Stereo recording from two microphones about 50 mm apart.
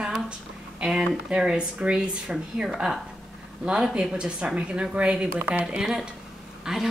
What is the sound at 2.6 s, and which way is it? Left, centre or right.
Speech, centre.